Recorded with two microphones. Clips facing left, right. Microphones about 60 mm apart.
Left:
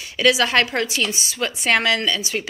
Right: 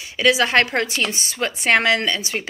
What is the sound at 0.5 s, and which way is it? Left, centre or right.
A woman's voice, right.